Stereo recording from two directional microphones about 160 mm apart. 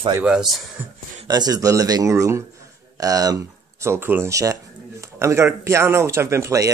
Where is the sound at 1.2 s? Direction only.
25° right (ahead or behind).